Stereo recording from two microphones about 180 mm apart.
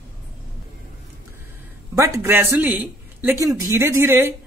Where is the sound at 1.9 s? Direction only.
15° right (ahead or behind).